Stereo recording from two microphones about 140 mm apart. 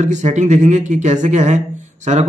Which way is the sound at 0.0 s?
60° right (ahead or behind).